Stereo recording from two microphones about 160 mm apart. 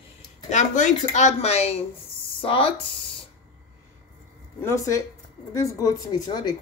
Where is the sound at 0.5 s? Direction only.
50° left (ahead or behind); by 2.7 s 35° left (ahead or behind).